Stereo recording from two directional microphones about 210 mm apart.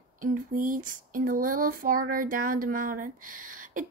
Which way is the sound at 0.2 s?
40° right (ahead or behind).